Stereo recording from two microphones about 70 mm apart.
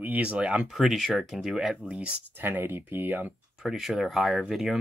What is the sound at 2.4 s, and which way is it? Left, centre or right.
Speech, right.